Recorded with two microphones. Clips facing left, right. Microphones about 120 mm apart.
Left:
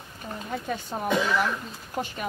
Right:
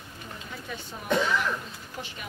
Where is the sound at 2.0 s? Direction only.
45° left (ahead or behind).